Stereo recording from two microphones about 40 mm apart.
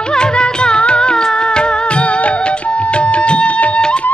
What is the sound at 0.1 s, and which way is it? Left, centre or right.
Music, left.